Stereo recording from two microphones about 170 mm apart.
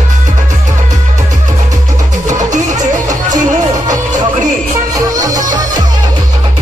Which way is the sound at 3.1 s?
20° right (ahead or behind).